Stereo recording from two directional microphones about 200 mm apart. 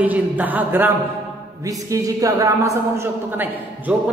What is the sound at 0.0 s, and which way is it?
A man's voice, 10° right (ahead or behind).